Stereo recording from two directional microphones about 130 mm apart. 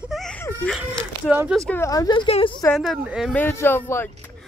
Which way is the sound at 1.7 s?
25° left (ahead or behind).